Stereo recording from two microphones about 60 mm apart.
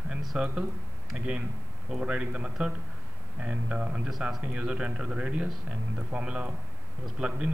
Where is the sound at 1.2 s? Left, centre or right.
Centre.